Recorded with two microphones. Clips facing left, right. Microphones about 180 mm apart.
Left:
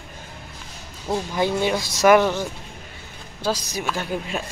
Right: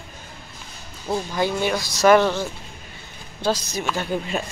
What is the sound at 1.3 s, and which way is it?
Speech, 20° left (ahead or behind).